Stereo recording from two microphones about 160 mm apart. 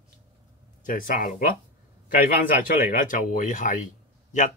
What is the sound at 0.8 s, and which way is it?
Speech, 60° left (ahead or behind).